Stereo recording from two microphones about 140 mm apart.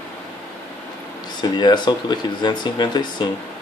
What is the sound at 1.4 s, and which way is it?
Speech, 30° left (ahead or behind).